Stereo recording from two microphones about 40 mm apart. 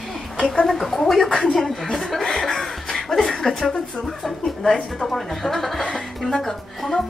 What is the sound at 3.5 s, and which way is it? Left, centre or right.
A woman's voice, centre.